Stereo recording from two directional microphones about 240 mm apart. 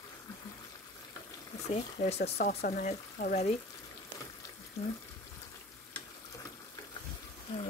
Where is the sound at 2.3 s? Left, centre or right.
Left.